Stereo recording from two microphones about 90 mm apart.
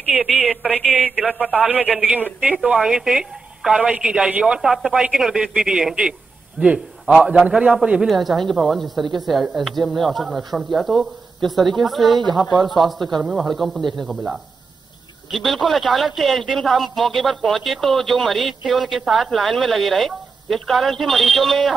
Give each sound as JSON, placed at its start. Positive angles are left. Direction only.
{"t": 0.1, "sound": "a man's voice", "side_deg": -5}
{"t": 8.1, "sound": "a man's voice", "side_deg": 0}
{"t": 12.7, "sound": "speech", "side_deg": -55}
{"t": 13.3, "sound": "a man's voice", "side_deg": 0}
{"t": 15.3, "sound": "a man's voice", "side_deg": 0}